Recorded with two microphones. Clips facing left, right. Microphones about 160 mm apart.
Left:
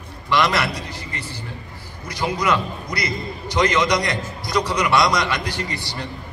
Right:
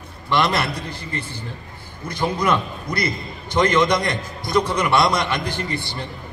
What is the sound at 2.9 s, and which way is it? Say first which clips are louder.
A man's voice: right 3 dB; 55° right (ahead or behind).